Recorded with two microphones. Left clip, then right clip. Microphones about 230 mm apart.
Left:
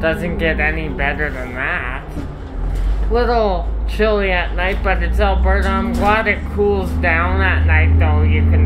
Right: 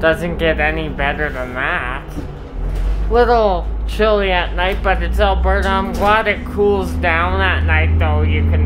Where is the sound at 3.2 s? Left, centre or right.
Centre.